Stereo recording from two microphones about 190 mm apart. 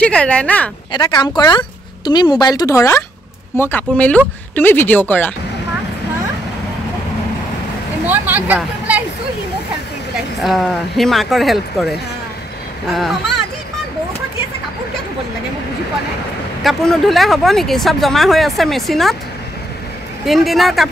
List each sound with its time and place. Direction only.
0.0 s speech: 5° left (ahead or behind)
0.9 s a woman's voice: 25° left (ahead or behind)
8.1 s speech: 10° right (ahead or behind)
10.4 s speech: centre (ahead or behind)
16.6 s speech: centre (ahead or behind)
20.2 s speech: centre (ahead or behind)